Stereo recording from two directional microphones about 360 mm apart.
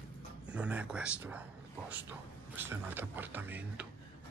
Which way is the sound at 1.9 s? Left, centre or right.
Centre.